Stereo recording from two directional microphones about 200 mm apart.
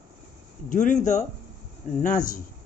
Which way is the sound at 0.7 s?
40° left (ahead or behind).